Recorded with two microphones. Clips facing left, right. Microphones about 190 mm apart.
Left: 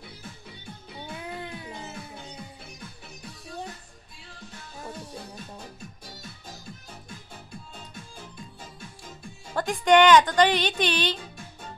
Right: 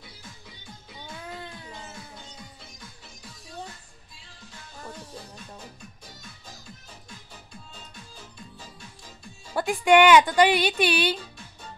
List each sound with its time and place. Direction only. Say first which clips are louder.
1.2 s music: left 2 dB; 15° left (ahead or behind)
9.6 s a woman's voice: right 1 dB; 10° right (ahead or behind)